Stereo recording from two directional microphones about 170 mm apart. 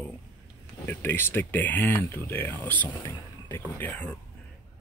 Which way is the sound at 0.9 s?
10° left (ahead or behind).